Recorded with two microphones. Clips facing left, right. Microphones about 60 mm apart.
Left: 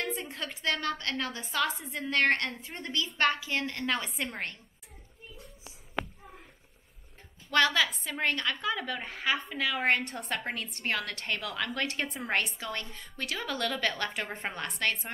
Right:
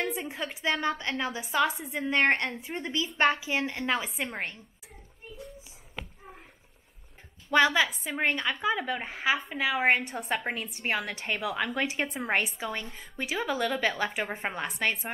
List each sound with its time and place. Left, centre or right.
0.0 s a woman's voice: centre
7.5 s a woman's voice: centre